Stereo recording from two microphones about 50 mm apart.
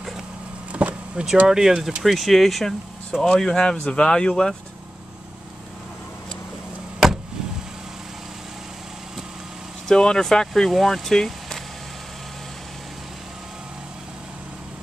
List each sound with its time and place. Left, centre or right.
0.7 s vehicle: right
1.5 s speech: centre
7.0 s vehicle: centre
9.8 s speech: centre